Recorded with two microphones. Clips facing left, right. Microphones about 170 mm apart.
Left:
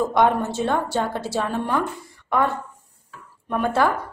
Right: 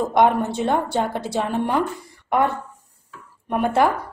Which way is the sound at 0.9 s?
20° right (ahead or behind).